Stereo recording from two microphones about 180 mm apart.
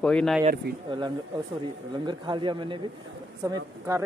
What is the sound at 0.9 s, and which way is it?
Speech, 25° right (ahead or behind).